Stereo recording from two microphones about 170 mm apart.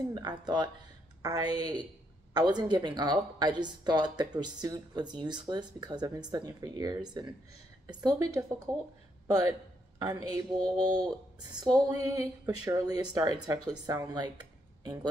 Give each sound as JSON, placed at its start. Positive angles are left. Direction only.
{"t": 0.1, "sound": "speech", "side_deg": -25}
{"t": 8.7, "sound": "speech", "side_deg": 5}
{"t": 10.0, "sound": "speech", "side_deg": -25}